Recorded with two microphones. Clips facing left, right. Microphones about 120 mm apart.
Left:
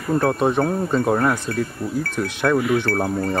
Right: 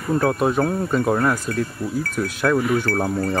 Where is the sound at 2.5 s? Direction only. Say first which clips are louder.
Left 1 dB; 40° right (ahead or behind).